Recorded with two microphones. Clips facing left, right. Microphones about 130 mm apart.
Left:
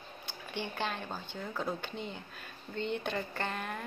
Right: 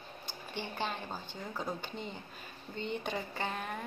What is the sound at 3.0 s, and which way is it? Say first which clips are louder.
Speech: left 1 dB; 10° right (ahead or behind).